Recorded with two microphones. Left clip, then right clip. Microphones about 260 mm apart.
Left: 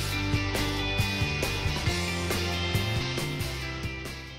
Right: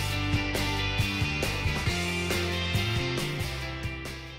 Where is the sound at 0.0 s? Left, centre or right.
Centre.